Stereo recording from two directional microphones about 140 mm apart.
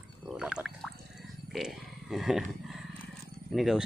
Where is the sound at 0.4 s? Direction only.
5° right (ahead or behind).